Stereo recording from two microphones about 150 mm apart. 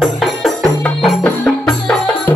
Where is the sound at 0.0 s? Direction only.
Centre (ahead or behind).